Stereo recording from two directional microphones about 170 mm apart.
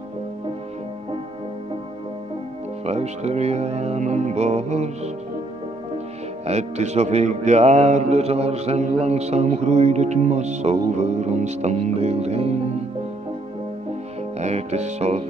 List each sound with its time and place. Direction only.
2.9 s speech: 40° right (ahead or behind)
6.4 s speech: 40° right (ahead or behind)
14.4 s speech: 40° right (ahead or behind)